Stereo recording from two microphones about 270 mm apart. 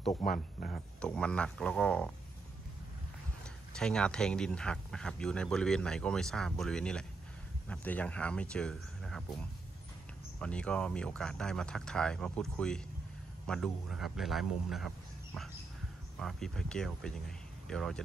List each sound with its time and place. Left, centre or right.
0.2 s speech: left
0.7 s speech: centre
3.7 s speech: centre
16.2 s speech: centre